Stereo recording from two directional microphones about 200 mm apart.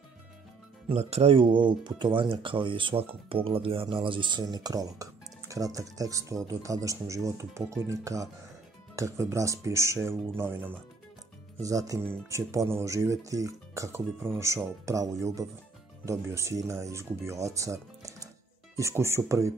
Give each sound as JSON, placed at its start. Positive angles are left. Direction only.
{"t": 0.8, "sound": "speech", "side_deg": -30}